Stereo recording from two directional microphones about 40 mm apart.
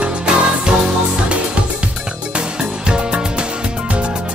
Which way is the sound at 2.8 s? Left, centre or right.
Right.